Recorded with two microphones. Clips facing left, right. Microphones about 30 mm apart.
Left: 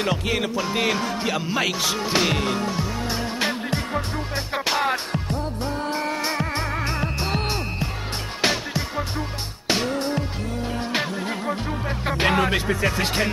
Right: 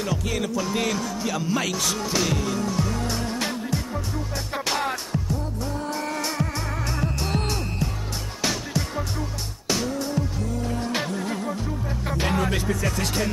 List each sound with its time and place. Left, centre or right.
0.0 s music: left
2.8 s music: left
4.6 s music: left
5.1 s music: left
9.7 s music: left